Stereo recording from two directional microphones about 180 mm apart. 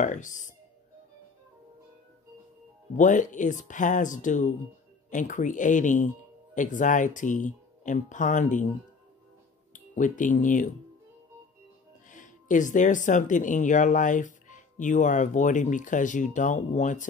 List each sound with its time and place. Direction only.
0.0 s speech: 45° left (ahead or behind)
3.0 s speech: 45° left (ahead or behind)
9.7 s speech: 45° left (ahead or behind)
12.1 s speech: 45° left (ahead or behind)